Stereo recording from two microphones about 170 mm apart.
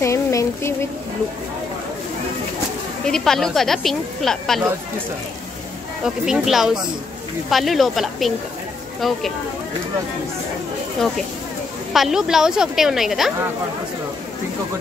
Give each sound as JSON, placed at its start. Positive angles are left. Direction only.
{"t": 0.0, "sound": "a sound", "side_deg": 20}
{"t": 3.1, "sound": "speech", "side_deg": 5}
{"t": 6.0, "sound": "speech", "side_deg": -5}
{"t": 11.9, "sound": "speech", "side_deg": 0}